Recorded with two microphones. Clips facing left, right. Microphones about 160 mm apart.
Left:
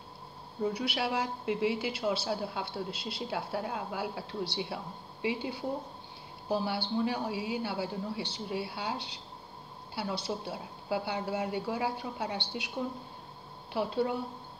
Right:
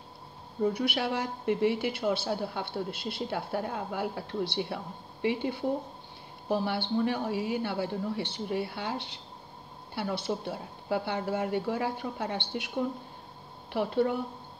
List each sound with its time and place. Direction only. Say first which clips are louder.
0.7 s a woman's voice: right 2 dB; 50° right (ahead or behind)
13.7 s a woman's voice: right 3 dB; 55° right (ahead or behind)